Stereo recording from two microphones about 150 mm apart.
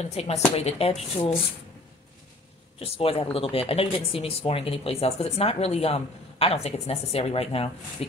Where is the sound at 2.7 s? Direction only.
40° left (ahead or behind).